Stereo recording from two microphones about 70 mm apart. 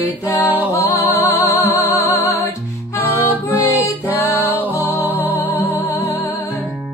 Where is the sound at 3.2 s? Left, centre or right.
Left.